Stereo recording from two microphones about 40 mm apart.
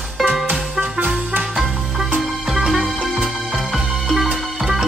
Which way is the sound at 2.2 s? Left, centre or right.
Centre.